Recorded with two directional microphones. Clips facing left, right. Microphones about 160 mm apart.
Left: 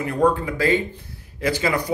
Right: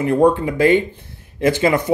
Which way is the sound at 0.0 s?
25° right (ahead or behind).